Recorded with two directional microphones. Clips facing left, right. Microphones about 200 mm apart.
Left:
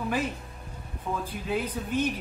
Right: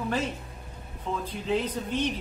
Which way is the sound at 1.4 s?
10° left (ahead or behind).